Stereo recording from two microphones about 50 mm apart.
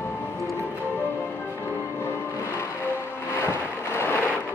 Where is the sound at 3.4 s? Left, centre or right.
Left.